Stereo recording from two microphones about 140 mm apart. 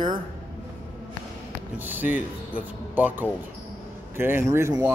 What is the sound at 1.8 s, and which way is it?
A man's voice, 10° right (ahead or behind).